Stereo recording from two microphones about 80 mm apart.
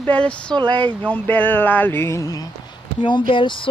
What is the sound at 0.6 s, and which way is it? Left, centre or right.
Speech, right.